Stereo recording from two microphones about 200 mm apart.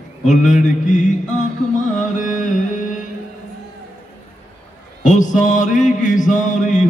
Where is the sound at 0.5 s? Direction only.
40° left (ahead or behind).